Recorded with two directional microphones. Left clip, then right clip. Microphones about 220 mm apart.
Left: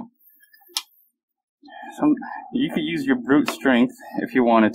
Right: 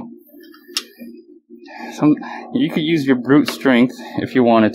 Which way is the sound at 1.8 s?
15° right (ahead or behind).